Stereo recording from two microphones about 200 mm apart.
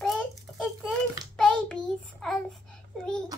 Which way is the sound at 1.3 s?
5° left (ahead or behind).